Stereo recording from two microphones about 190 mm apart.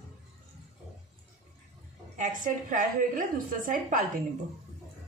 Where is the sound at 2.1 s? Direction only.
45° right (ahead or behind).